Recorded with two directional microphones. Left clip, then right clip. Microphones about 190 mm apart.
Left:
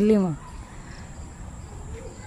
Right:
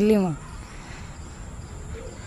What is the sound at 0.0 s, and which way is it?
Speech, 15° left (ahead or behind).